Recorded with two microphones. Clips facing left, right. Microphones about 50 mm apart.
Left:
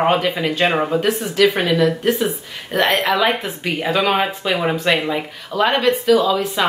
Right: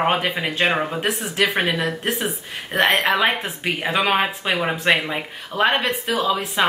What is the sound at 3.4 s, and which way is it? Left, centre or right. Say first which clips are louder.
A woman's voice: left 2 dB; centre.